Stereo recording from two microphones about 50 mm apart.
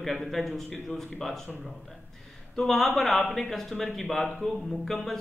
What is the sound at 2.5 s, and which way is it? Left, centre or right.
Speech, centre.